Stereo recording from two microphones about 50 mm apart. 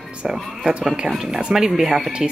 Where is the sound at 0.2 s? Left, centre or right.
Centre.